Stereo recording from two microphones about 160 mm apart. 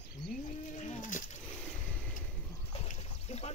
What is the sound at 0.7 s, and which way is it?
Speech, 50° left (ahead or behind).